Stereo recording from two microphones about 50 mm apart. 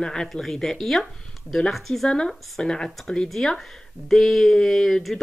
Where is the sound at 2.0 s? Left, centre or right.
Centre.